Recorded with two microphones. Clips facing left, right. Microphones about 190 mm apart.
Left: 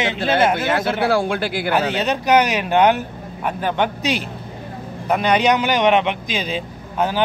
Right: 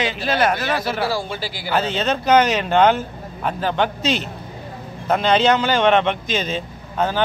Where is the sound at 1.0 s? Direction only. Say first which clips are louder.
Left 5 dB; 65° left (ahead or behind).